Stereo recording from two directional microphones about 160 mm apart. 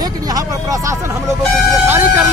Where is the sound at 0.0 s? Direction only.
20° right (ahead or behind).